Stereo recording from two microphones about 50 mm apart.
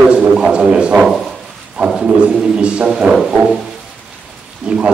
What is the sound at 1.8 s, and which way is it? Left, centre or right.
A man's voice, right.